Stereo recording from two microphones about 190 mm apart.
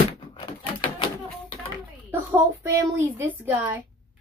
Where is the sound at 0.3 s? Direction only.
30° left (ahead or behind).